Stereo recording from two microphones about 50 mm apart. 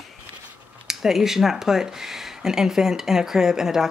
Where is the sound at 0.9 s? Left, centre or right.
Centre.